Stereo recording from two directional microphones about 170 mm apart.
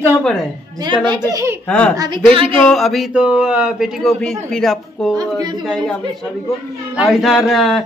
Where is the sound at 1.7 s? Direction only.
5° left (ahead or behind).